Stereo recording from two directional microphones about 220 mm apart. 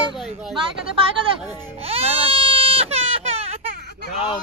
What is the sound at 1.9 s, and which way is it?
Baby cry, 25° right (ahead or behind).